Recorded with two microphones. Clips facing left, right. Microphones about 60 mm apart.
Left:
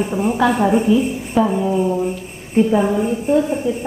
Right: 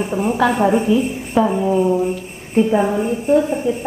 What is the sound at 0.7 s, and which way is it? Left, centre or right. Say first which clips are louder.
A woman's voice: left 1 dB; centre.